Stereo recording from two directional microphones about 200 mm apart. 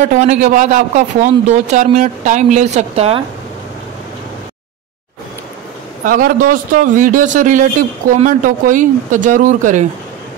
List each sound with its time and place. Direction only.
0.0 s a man's voice: 35° right (ahead or behind)
6.0 s a man's voice: 45° right (ahead or behind)